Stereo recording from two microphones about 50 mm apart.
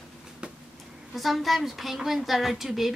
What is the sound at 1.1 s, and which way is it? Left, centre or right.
A woman's voice, centre.